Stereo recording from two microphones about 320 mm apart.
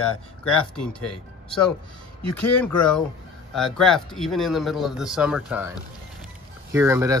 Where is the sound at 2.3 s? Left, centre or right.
Centre.